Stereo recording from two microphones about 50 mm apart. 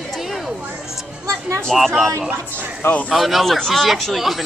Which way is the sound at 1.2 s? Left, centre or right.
Right.